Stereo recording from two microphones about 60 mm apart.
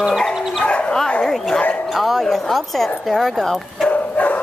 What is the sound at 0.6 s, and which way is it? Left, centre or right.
Bow-wow, centre.